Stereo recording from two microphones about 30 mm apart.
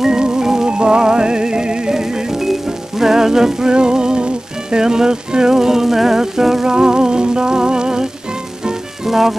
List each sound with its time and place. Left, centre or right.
0.0 s music: right
0.7 s music: right
2.0 s music: centre
6.7 s music: right
9.0 s speech: centre